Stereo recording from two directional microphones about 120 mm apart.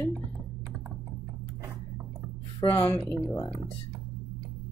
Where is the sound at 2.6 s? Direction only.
40° left (ahead or behind).